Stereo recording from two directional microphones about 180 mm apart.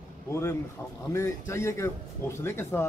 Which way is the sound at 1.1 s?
15° left (ahead or behind).